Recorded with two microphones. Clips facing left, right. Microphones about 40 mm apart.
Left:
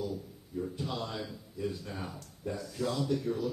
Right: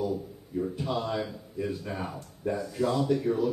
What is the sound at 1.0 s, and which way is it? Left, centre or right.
A man's voice, right.